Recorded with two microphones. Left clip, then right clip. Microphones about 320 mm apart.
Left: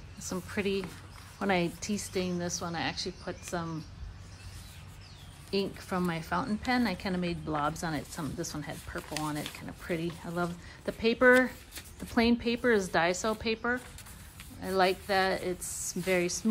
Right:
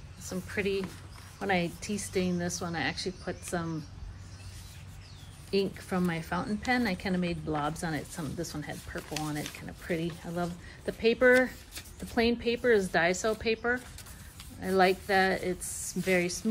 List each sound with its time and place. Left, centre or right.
0.3 s speech: centre
5.5 s speech: centre